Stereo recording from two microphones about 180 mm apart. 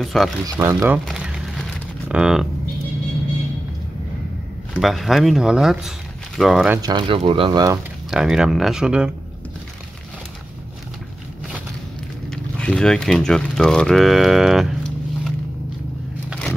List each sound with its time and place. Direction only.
0.0 s speech: centre (ahead or behind)
0.6 s speech: 15° right (ahead or behind)
1.0 s a sound: 5° right (ahead or behind)
4.7 s speech: centre (ahead or behind)
6.8 s speech: 25° right (ahead or behind)
8.1 s speech: 5° right (ahead or behind)
12.3 s speech: 5° left (ahead or behind)